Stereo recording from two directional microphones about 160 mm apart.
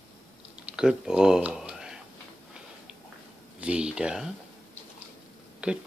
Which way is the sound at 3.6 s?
5° right (ahead or behind).